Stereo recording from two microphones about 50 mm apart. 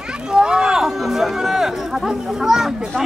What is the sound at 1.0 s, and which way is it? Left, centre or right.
Speech, centre.